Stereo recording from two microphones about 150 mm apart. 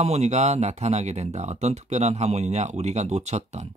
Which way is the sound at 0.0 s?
45° right (ahead or behind).